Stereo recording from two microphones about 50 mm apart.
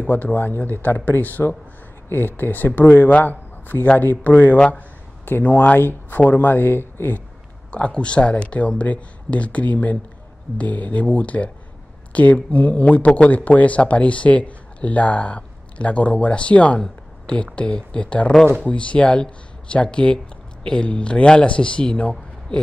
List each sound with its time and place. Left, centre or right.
0.0 s a man's voice: left
6.5 s speech: left
7.7 s speech: left
16.8 s a sound: centre
17.6 s speech: left